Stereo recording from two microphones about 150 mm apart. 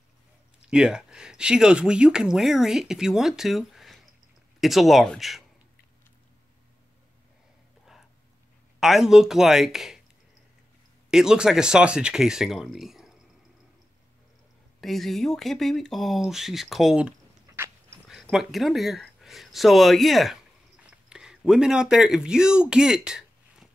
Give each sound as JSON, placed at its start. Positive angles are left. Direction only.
{"t": 0.7, "sound": "speech", "side_deg": -5}
{"t": 8.7, "sound": "speech", "side_deg": 0}
{"t": 11.1, "sound": "speech", "side_deg": -5}
{"t": 14.8, "sound": "speech", "side_deg": 0}
{"t": 17.5, "sound": "dog", "side_deg": -15}
{"t": 18.0, "sound": "speech", "side_deg": 0}